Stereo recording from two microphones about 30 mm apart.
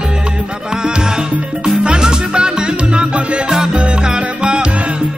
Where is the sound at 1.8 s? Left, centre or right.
Right.